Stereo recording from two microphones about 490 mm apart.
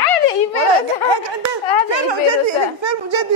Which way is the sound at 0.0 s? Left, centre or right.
Left.